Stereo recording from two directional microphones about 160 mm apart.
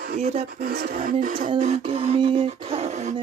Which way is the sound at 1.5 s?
40° right (ahead or behind).